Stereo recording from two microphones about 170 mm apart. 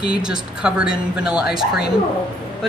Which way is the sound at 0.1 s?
5° right (ahead or behind).